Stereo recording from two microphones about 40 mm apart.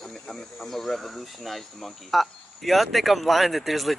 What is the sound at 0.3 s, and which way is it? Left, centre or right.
Speech, centre.